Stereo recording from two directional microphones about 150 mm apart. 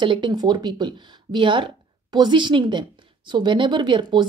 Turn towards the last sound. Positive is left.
turn(degrees=-30)  # may be behind; listen again after turning